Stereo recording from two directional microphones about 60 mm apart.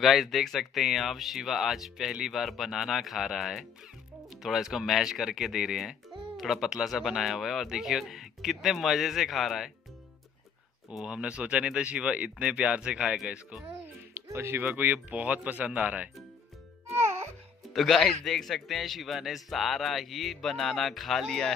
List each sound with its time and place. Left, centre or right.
0.0 s a man's voice: centre
11.0 s speech: centre
14.1 s a sound: right
14.6 s speech: right
16.8 s music: right
17.7 s a man's voice: centre